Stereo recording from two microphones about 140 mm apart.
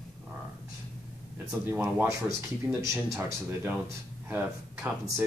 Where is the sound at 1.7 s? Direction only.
15° right (ahead or behind).